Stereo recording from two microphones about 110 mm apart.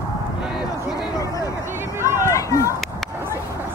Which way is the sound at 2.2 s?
30° left (ahead or behind).